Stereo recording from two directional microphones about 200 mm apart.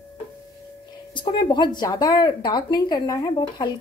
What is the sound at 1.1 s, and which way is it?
Speech, 25° left (ahead or behind).